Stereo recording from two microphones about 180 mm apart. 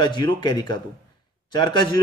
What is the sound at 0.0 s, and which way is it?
A man's voice, 25° left (ahead or behind).